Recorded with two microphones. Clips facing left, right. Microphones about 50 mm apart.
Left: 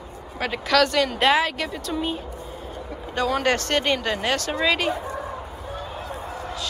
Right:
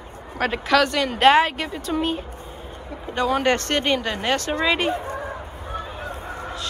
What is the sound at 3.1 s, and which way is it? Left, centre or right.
Speech, centre.